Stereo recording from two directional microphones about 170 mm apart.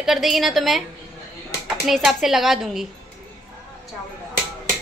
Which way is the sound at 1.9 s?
Centre (ahead or behind).